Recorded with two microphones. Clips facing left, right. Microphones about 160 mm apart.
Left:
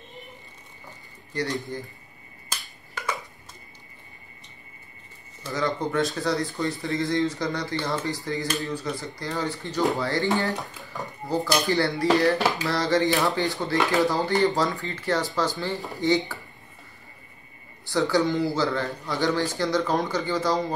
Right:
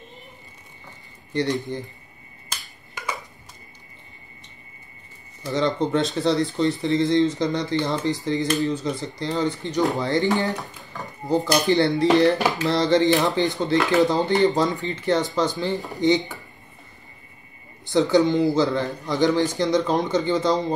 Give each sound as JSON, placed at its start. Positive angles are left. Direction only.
{"t": 1.3, "sound": "speech", "side_deg": -20}
{"t": 5.4, "sound": "speech", "side_deg": -20}
{"t": 17.8, "sound": "speech", "side_deg": -20}